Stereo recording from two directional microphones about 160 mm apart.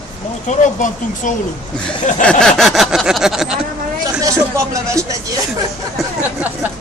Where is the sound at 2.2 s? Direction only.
5° left (ahead or behind).